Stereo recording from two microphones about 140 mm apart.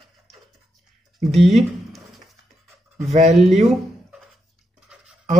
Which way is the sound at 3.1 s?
50° right (ahead or behind).